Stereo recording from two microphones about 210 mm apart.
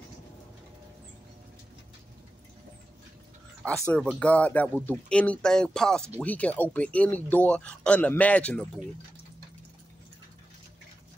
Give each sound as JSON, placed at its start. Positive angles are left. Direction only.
{"t": 3.8, "sound": "speech", "side_deg": 5}